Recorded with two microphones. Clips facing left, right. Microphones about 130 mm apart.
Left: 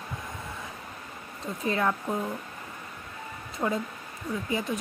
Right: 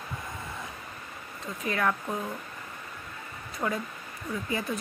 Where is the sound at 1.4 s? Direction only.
30° left (ahead or behind).